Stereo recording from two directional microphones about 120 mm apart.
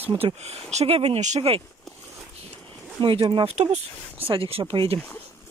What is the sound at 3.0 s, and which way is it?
Speech, 45° right (ahead or behind).